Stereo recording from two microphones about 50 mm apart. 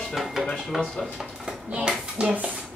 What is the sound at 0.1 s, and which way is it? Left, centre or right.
Speech, centre.